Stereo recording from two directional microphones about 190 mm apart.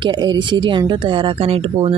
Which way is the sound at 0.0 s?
25° right (ahead or behind).